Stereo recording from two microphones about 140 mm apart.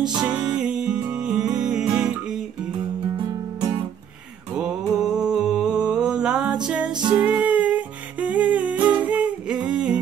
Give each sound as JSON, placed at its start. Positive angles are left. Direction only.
{"t": 0.2, "sound": "music", "side_deg": -5}
{"t": 4.6, "sound": "a sound", "side_deg": -5}
{"t": 7.2, "sound": "humming", "side_deg": -10}